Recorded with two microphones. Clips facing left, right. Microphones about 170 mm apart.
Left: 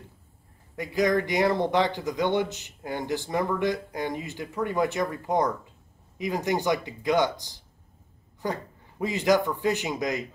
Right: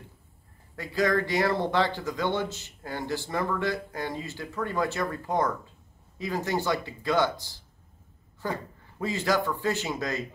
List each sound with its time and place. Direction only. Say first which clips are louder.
0.7 s speech: left 2 dB; 15° left (ahead or behind)